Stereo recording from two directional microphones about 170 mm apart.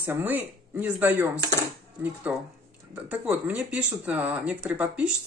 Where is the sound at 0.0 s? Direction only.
10° right (ahead or behind).